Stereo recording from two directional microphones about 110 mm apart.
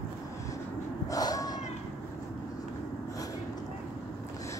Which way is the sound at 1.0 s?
30° left (ahead or behind).